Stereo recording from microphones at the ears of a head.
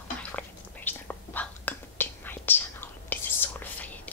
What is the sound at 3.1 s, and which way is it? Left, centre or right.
Whispering, left.